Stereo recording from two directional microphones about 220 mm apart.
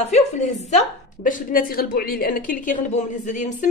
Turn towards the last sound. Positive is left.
turn(degrees=35)  # may be behind; listen again after turning